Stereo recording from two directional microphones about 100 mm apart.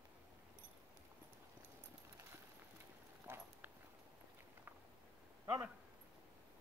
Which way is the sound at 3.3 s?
20° right (ahead or behind).